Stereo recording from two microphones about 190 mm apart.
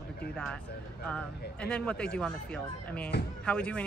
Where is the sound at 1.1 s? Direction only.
5° left (ahead or behind).